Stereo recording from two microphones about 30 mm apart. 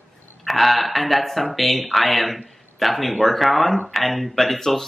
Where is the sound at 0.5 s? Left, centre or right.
Centre.